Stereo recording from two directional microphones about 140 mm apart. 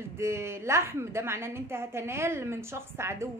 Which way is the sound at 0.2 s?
20° right (ahead or behind).